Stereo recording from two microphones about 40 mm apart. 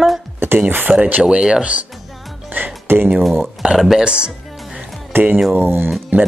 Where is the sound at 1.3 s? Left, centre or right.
Right.